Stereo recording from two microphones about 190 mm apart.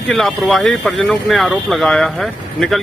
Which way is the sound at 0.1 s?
Centre (ahead or behind).